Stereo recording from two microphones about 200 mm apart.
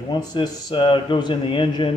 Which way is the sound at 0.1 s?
20° left (ahead or behind).